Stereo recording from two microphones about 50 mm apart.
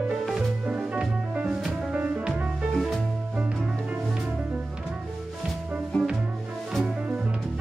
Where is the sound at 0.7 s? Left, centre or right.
Centre.